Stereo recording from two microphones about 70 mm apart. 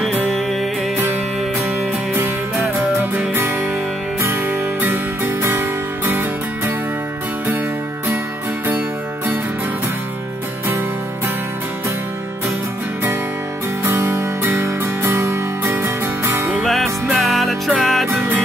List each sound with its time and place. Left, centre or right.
4.2 s music: right
13.8 s music: right
16.6 s music: centre